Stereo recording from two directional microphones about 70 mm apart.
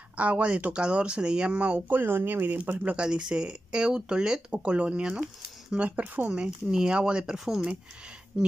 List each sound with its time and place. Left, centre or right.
0.2 s speech: centre